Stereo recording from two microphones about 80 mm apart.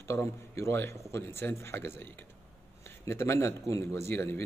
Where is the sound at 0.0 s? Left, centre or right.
Left.